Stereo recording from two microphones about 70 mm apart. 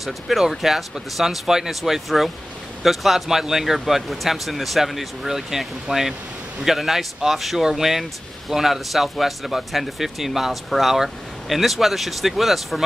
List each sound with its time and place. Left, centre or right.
0.0 s speech: centre